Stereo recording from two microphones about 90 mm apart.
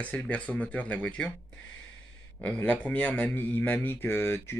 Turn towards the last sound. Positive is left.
turn(degrees=25)  # may be behind; listen again after turning